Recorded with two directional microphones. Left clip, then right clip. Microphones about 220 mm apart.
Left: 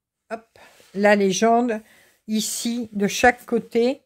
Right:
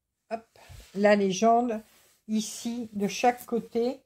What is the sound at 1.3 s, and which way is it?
Speech, 40° left (ahead or behind).